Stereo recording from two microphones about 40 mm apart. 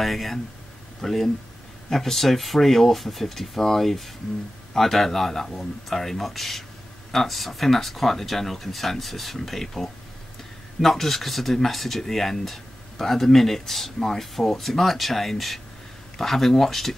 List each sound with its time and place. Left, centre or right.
0.0 s speech: centre